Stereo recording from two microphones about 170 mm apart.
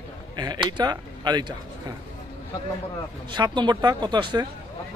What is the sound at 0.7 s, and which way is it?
Speech, 25° right (ahead or behind).